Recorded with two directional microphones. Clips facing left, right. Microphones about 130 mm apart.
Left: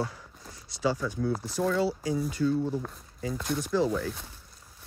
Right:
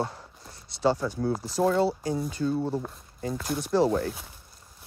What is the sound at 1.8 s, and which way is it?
Speech, 30° right (ahead or behind).